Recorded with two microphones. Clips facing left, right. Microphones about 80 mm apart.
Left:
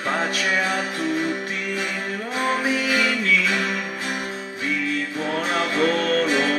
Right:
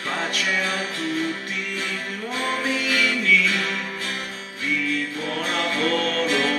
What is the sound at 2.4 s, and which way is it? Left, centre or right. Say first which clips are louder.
Music: left 3 dB; centre.